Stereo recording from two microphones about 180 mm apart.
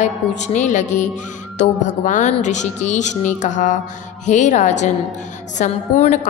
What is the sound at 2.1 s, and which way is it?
Music, 40° left (ahead or behind).